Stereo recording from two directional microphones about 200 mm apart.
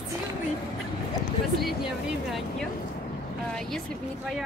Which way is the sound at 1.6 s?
Centre (ahead or behind).